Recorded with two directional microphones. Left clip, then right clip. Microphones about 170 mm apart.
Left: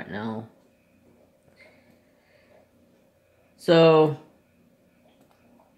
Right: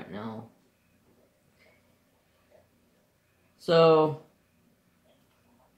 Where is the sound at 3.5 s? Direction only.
45° left (ahead or behind).